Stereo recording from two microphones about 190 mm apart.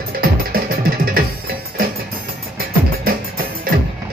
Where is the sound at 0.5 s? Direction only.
50° right (ahead or behind).